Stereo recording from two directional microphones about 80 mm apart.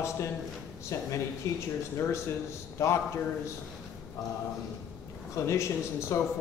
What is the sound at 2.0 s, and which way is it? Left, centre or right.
Speech, left.